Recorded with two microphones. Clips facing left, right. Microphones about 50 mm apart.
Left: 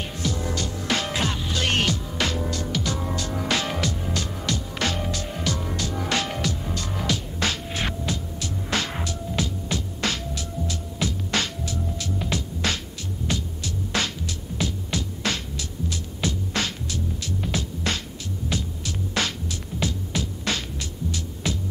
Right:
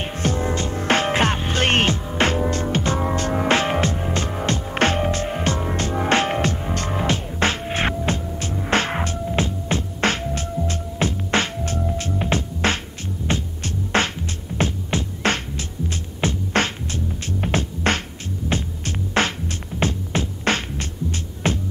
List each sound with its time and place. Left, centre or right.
0.0 s music: right